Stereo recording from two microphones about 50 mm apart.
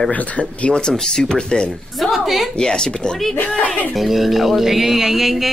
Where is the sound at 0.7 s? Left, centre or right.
Centre.